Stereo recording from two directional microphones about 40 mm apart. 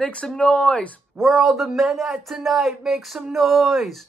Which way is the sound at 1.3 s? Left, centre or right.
Centre.